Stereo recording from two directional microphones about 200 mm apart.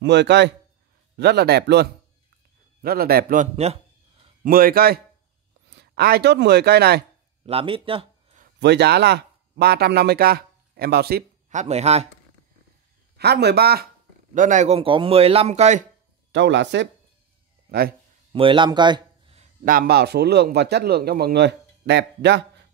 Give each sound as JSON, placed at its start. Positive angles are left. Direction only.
{"t": 0.0, "sound": "a man's voice", "side_deg": -60}
{"t": 4.5, "sound": "speech", "side_deg": -45}
{"t": 7.4, "sound": "speech", "side_deg": -25}
{"t": 8.5, "sound": "speech", "side_deg": -55}
{"t": 11.5, "sound": "a man's voice", "side_deg": -30}
{"t": 13.2, "sound": "speech", "side_deg": -55}
{"t": 14.3, "sound": "a man's voice", "side_deg": -40}
{"t": 16.3, "sound": "a man's voice", "side_deg": -60}
{"t": 18.3, "sound": "a sound", "side_deg": -25}
{"t": 19.6, "sound": "a man's voice", "side_deg": -45}